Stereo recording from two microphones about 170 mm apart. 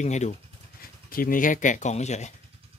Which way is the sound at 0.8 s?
55° left (ahead or behind).